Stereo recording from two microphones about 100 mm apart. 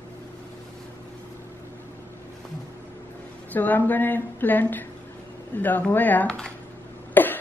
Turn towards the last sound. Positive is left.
turn(degrees=20)  # may be behind; listen again after turning